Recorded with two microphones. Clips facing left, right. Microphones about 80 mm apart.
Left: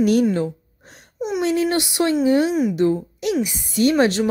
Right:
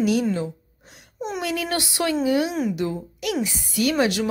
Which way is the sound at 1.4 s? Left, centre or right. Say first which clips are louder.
Left 7 dB; left.